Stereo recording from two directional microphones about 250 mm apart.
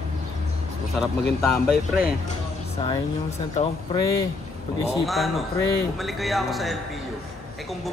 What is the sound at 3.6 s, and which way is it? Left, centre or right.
Speech, left.